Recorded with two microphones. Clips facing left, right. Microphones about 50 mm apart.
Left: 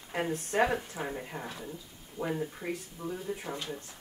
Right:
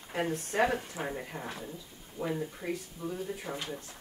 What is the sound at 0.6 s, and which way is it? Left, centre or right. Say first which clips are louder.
Speech: even; centre.